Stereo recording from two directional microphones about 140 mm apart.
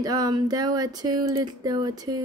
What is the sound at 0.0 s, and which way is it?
Speech, 25° right (ahead or behind).